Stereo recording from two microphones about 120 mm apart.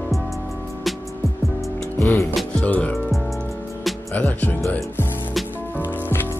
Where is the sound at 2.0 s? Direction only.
25° left (ahead or behind).